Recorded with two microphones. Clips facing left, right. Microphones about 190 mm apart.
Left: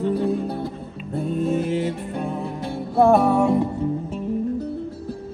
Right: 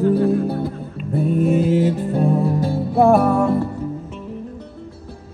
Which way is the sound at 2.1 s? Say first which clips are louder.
Right 9 dB; 35° right (ahead or behind).